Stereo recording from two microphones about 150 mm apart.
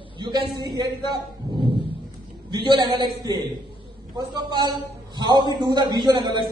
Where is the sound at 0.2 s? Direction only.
30° right (ahead or behind).